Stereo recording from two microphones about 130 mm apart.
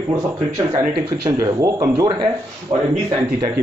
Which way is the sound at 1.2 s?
25° right (ahead or behind).